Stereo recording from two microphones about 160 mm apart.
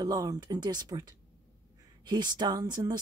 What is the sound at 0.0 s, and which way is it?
Speech, 25° right (ahead or behind).